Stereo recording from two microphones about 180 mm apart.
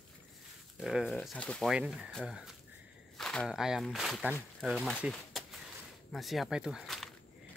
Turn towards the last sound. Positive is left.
turn(degrees=0)  # may be behind; listen again after turning